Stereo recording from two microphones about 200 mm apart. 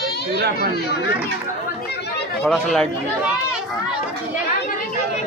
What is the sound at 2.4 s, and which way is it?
Speech, centre (ahead or behind).